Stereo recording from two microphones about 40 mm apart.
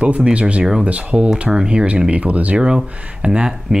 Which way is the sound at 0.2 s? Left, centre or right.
Right.